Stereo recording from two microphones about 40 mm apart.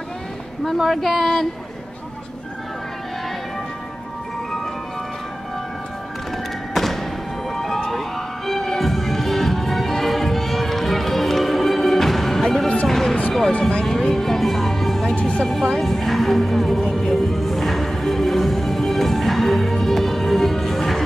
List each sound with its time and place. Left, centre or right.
0.8 s speech: centre
6.3 s music: centre
7.9 s heart sounds: centre
12.8 s music: centre
13.5 s speech: left
13.8 s music: centre
15.4 s speech: centre
16.9 s music: centre